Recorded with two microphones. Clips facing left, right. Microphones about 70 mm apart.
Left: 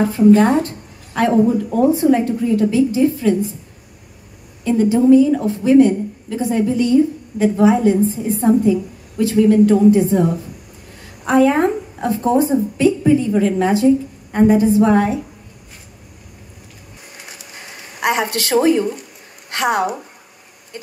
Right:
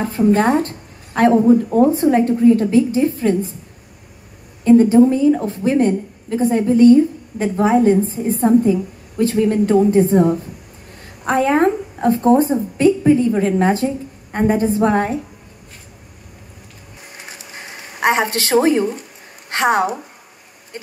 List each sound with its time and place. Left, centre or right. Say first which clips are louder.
0.1 s a woman's voice: left 1 dB; right
4.6 s a woman's voice: right 2 dB; right
11.2 s a woman's voice: left 1 dB; right
17.6 s a woman's voice: right 3 dB; right
20.7 s a sound: right 1 dB; right